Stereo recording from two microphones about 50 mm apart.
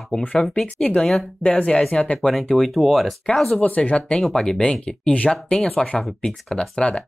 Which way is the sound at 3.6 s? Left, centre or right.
Left.